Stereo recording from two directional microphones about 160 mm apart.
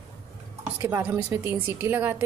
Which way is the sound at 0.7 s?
15° right (ahead or behind).